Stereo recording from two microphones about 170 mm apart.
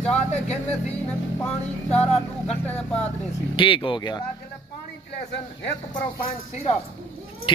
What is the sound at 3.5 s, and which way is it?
Speech, 30° left (ahead or behind).